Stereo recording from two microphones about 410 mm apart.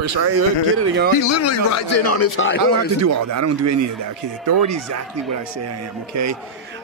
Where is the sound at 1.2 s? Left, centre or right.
Left.